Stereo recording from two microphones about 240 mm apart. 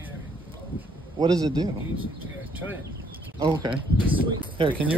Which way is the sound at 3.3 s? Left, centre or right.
Centre.